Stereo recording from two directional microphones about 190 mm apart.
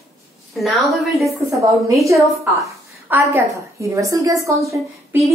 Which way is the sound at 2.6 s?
15° right (ahead or behind).